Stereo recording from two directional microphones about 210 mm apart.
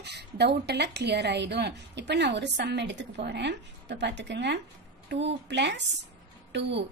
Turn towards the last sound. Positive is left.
turn(degrees=-55)  # may be behind; listen again after turning